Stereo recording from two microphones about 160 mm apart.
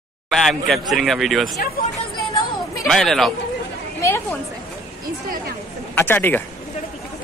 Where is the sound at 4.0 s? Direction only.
15° left (ahead or behind).